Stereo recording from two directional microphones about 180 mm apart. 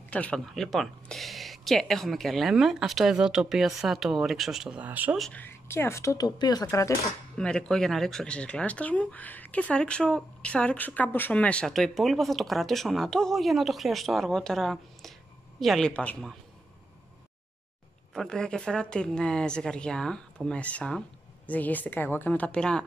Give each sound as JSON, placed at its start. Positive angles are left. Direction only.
{"t": 0.1, "sound": "speech", "side_deg": 5}
{"t": 5.2, "sound": "a woman's voice", "side_deg": 10}
{"t": 7.3, "sound": "speech", "side_deg": 5}
{"t": 18.1, "sound": "a woman's voice", "side_deg": 5}